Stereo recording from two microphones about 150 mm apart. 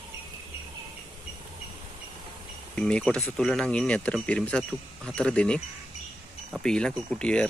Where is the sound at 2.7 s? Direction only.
5° left (ahead or behind).